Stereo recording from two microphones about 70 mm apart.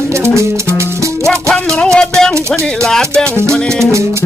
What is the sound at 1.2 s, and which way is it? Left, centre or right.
Music, centre.